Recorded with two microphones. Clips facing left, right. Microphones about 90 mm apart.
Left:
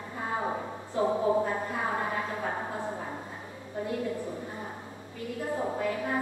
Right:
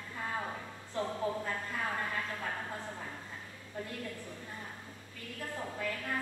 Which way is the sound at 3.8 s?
20° left (ahead or behind).